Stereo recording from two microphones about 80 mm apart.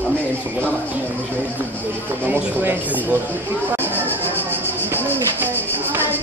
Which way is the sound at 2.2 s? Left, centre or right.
Right.